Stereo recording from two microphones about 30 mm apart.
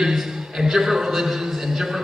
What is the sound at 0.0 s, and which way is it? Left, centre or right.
A man's voice, centre.